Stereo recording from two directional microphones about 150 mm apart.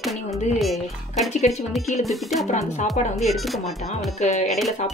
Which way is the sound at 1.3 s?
45° left (ahead or behind).